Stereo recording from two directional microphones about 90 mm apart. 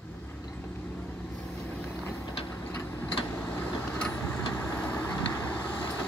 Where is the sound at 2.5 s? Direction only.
25° left (ahead or behind).